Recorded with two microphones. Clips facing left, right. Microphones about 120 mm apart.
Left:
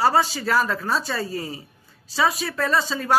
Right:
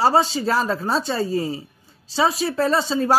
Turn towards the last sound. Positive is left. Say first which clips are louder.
# right 3 dB
turn(degrees=-30)  # may be behind; listen again after turning